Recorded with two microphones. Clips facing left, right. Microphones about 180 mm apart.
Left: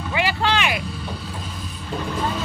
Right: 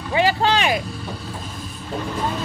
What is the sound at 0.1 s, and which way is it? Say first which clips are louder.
Speech: right 4 dB; 40° right (ahead or behind).